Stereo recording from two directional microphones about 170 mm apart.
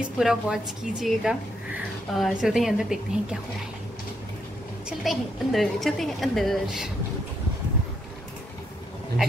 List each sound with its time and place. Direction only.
0.2 s a woman's voice: 5° right (ahead or behind)
4.8 s a woman's voice: centre (ahead or behind)